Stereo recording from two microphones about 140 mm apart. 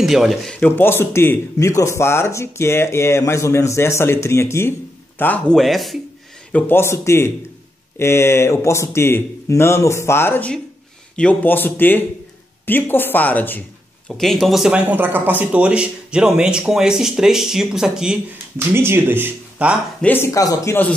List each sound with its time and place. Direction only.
0.0 s speech: centre (ahead or behind)
5.6 s speech: centre (ahead or behind)
6.5 s speech: 15° left (ahead or behind); by 18.1 s 5° right (ahead or behind)
18.7 s speech: 15° right (ahead or behind)
20.0 s speech: 15° left (ahead or behind)